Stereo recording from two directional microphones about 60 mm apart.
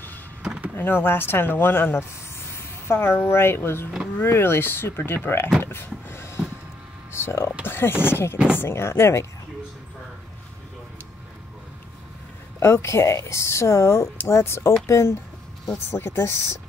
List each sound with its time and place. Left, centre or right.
0.7 s speech: left
5.6 s vehicle: left
7.1 s a sound: left
7.6 s speech: left
12.5 s speech: left